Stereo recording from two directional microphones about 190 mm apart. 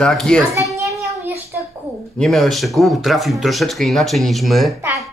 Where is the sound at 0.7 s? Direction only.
15° right (ahead or behind).